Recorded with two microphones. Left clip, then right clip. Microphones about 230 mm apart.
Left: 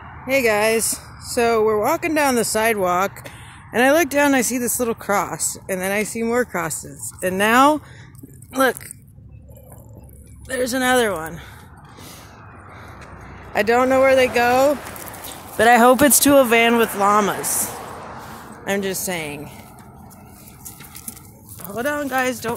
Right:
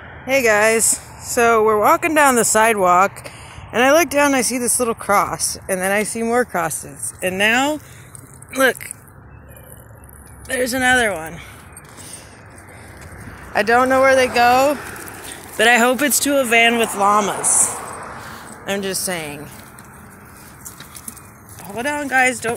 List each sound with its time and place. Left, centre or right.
0.3 s speech: centre
8.5 s speech: centre
10.5 s speech: centre
13.5 s speech: centre
17.7 s a sound: right
18.7 s speech: centre
21.7 s speech: centre